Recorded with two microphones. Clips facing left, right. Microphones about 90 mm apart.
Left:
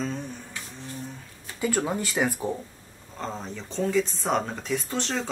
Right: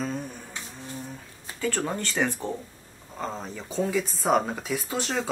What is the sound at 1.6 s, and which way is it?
Speech, 10° left (ahead or behind).